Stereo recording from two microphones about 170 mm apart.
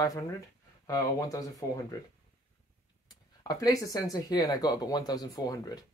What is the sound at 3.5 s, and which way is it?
Speech, 20° left (ahead or behind).